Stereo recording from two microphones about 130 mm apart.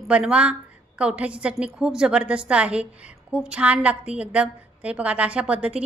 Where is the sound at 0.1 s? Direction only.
10° right (ahead or behind).